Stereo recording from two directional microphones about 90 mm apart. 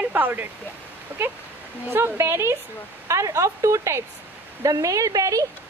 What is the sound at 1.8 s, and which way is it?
A woman's voice, 25° right (ahead or behind).